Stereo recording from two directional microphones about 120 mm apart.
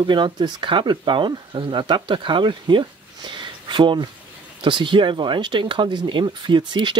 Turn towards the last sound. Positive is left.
turn(degrees=-40)  # may be behind; listen again after turning